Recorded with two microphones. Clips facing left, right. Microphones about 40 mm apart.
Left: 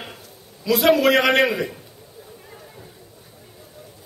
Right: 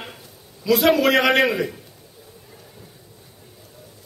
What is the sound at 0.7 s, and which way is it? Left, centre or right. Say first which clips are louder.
A man's voice: even; centre.